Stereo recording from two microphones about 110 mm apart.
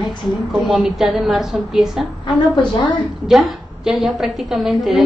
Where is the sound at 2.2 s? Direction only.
45° left (ahead or behind).